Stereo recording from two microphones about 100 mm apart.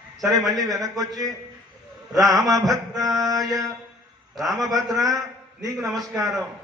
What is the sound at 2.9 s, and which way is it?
Speech, 35° right (ahead or behind).